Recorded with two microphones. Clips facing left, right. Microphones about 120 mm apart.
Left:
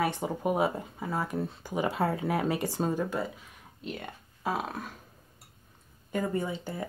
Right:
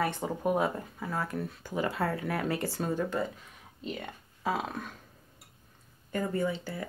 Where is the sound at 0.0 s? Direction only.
15° left (ahead or behind).